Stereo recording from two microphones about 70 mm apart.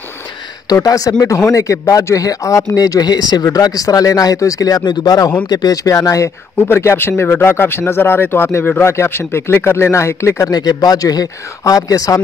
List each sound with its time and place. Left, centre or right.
0.8 s speech: left
1.2 s speech: left
3.4 s speech: left
6.7 s speech: left
10.5 s speech: left